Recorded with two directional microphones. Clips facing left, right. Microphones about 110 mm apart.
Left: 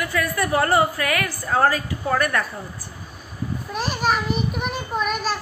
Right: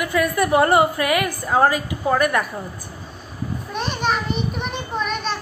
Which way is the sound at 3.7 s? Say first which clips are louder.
Even; 5° left (ahead or behind).